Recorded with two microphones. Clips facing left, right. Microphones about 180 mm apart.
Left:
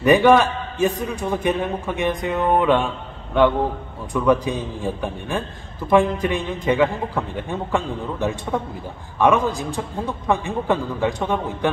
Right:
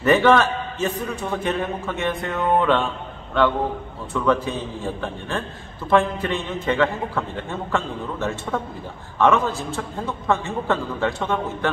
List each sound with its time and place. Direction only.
0.0 s a man's voice: 15° left (ahead or behind)